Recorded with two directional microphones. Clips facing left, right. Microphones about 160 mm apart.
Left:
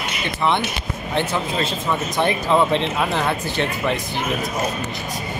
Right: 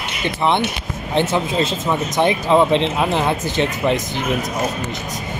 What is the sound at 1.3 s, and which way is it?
Speech, 20° right (ahead or behind).